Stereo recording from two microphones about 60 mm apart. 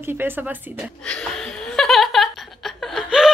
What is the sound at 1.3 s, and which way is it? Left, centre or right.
Laughter, centre.